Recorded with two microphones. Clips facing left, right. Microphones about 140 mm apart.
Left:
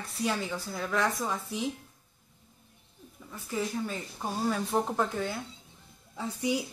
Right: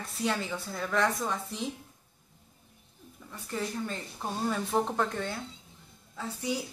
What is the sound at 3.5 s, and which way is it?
Speech, 5° left (ahead or behind).